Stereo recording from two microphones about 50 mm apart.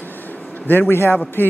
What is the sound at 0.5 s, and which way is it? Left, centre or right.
Speech, left.